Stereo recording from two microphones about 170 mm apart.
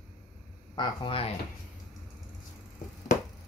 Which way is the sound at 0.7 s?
30° left (ahead or behind).